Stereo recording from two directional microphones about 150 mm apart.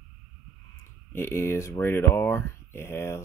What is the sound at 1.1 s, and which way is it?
Speech, 15° left (ahead or behind).